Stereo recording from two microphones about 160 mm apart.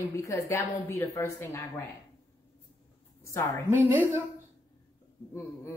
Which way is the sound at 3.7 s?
15° right (ahead or behind).